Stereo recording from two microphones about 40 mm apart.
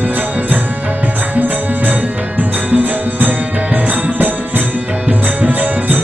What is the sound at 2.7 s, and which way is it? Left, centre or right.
Music, right.